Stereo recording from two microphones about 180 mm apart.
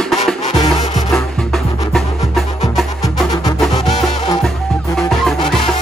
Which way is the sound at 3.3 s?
20° left (ahead or behind).